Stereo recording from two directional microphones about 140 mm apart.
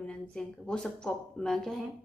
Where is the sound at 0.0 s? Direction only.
5° left (ahead or behind).